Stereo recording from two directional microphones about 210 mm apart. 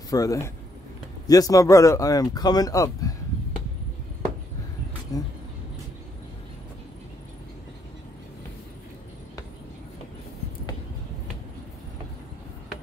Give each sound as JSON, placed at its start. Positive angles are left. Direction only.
{"t": 0.1, "sound": "speech", "side_deg": 15}
{"t": 5.1, "sound": "speech", "side_deg": 15}